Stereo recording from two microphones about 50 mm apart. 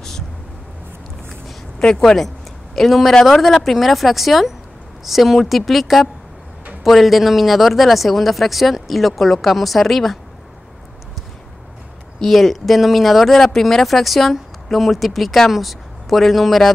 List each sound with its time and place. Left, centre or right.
1.8 s speech: centre
12.2 s speech: centre